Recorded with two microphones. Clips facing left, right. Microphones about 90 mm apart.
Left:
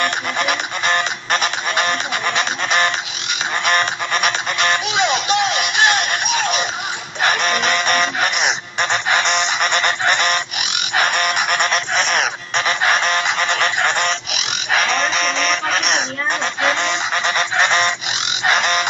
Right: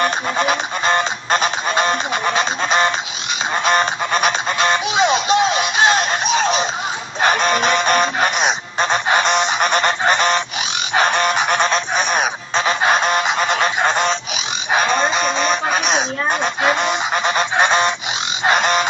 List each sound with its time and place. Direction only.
0.0 s honk: 25° right (ahead or behind)
7.2 s music: 30° right (ahead or behind)
11.0 s honk: 30° right (ahead or behind)
18.4 s frog: 25° right (ahead or behind)